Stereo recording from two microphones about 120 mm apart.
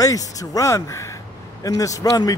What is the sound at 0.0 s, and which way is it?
A man's voice, 30° left (ahead or behind).